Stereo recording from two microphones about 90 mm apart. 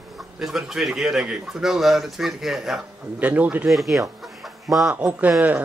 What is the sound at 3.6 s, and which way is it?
Speech, centre (ahead or behind).